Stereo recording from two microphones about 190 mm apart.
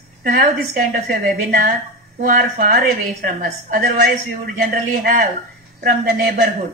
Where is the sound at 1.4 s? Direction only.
55° right (ahead or behind).